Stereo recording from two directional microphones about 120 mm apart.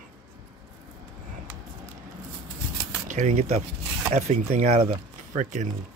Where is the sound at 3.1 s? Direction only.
80° right.